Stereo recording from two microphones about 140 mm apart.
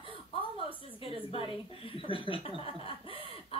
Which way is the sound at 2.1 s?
40° left (ahead or behind).